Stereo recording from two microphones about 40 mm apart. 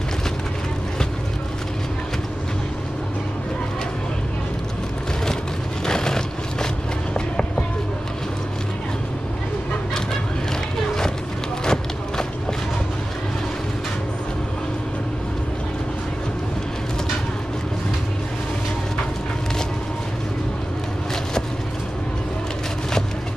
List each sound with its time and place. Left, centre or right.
5.9 s vehicle: centre
7.2 s a sound: left
11.6 s run: centre